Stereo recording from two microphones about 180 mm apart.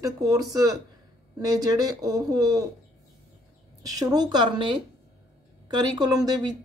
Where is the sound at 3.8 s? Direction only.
20° right (ahead or behind).